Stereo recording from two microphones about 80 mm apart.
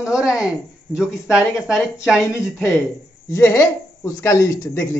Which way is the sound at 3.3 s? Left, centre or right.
Left.